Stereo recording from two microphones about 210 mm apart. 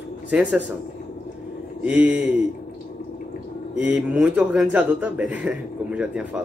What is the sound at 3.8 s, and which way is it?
Speech, 5° right (ahead or behind).